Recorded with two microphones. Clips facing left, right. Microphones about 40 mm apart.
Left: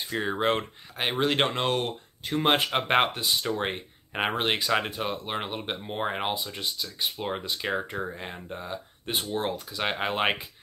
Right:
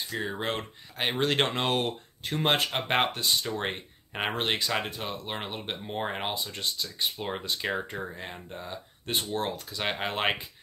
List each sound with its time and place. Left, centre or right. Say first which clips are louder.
0.1 s speech: left 6 dB; left
0.9 s speech: left 1 dB; centre
2.5 s speech: left 3 dB; centre